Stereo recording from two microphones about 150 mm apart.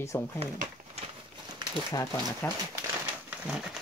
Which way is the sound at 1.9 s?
20° left (ahead or behind).